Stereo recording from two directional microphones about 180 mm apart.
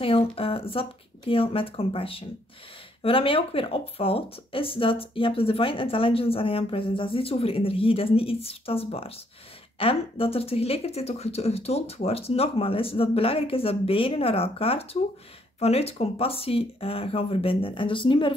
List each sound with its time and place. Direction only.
0.0 s speech: 30° left (ahead or behind)